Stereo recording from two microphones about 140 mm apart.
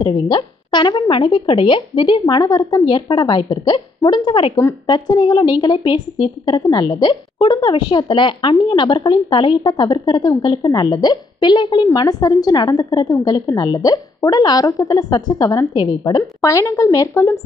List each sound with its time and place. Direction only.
0.0 s a woman's voice: 30° left (ahead or behind)